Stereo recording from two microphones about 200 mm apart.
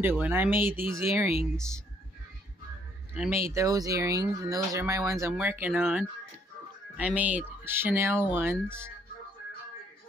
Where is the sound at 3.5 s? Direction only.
15° right (ahead or behind).